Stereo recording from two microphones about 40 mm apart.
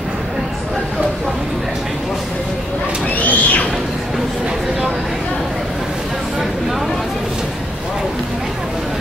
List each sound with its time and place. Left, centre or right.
3.2 s music: left